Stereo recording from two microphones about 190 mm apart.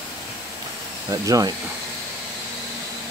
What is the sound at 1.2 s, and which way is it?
Speech, 15° right (ahead or behind).